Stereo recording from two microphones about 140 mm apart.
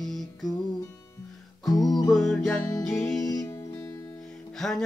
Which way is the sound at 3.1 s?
25° left (ahead or behind).